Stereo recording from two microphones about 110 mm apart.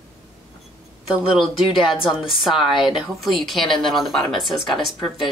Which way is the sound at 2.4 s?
Centre (ahead or behind).